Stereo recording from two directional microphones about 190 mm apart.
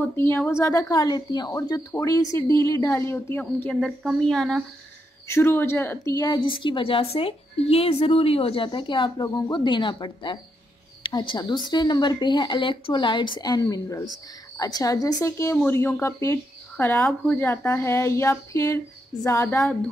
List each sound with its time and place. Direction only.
0.0 s a woman's voice: 10° left (ahead or behind)